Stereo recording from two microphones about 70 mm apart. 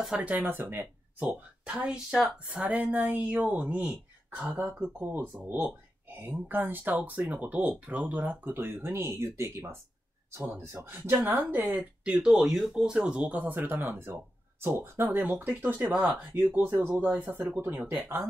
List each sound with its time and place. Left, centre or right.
0.2 s speech: right
1.7 s speech: centre
4.6 s speech: centre
4.9 s speech: right
11.7 s speech: centre
16.3 s speech: right